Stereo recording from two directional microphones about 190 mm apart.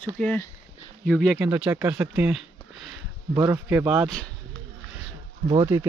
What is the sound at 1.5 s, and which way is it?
Speech, 10° right (ahead or behind).